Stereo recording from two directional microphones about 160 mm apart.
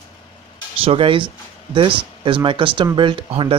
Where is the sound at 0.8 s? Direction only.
35° right (ahead or behind).